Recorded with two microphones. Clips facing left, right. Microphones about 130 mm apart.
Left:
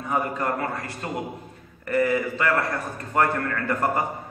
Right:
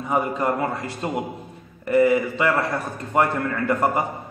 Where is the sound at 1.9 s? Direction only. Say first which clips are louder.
Right 5 dB; 20° right (ahead or behind).